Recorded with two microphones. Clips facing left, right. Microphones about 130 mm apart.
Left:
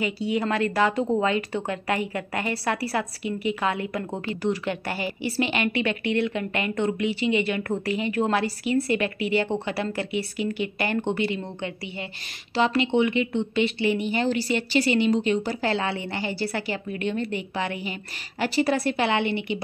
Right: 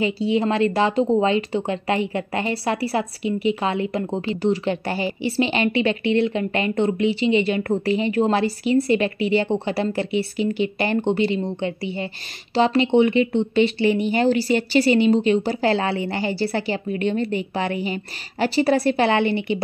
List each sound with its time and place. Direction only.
0.0 s a woman's voice: 25° right (ahead or behind)